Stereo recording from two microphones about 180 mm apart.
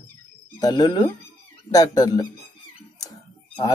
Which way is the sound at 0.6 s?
20° left (ahead or behind).